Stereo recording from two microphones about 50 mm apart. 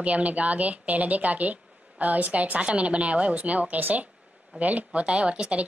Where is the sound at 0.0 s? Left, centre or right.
Right.